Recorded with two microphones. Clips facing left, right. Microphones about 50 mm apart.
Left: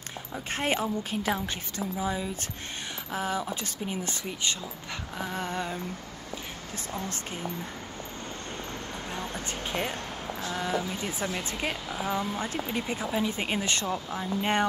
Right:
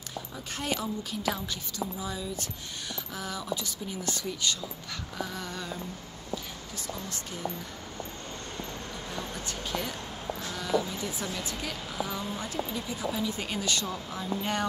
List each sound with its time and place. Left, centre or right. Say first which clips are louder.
0.5 s speech: left 5 dB; left
9.1 s speech: left 2 dB; left